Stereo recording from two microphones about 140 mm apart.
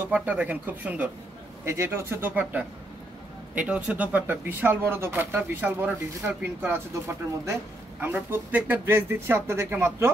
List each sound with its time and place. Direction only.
0.1 s speech: 10° right (ahead or behind)